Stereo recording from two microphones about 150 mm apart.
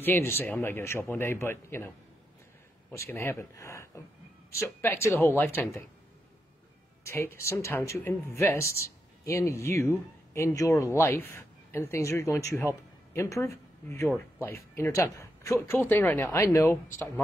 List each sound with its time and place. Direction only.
0.0 s a man's voice: 15° left (ahead or behind)
2.9 s a man's voice: 20° left (ahead or behind)
7.1 s a man's voice: 15° left (ahead or behind)